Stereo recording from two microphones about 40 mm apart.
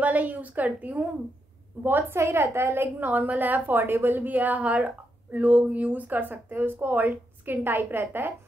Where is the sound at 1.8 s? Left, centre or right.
Right.